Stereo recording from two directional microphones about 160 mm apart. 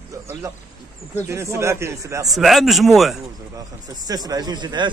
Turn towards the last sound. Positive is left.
turn(degrees=-25)  # may be behind; listen again after turning